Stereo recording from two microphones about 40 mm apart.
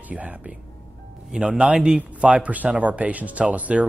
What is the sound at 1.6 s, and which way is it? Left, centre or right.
Speech, right.